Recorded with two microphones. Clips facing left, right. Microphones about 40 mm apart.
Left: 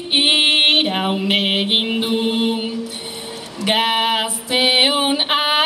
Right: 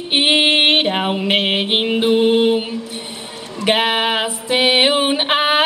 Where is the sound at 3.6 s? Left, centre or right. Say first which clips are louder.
Right 1 dB; centre.